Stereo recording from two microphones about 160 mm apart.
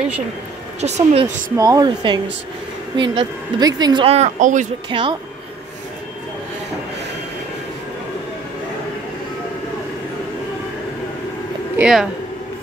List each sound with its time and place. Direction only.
0.7 s a woman's voice: 45° right (ahead or behind)
1.2 s speech: 25° right (ahead or behind); by 4.6 s 50° right (ahead or behind)
4.8 s speech: 30° right (ahead or behind)
11.8 s speech: centre (ahead or behind)